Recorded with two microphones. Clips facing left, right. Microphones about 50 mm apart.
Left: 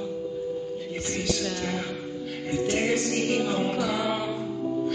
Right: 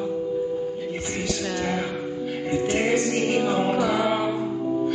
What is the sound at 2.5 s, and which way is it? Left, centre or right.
Music, centre.